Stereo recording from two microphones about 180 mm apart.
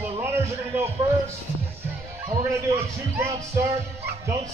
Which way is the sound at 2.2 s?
15° right (ahead or behind).